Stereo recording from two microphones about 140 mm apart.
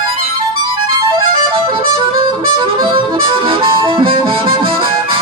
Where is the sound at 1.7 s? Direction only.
35° right (ahead or behind).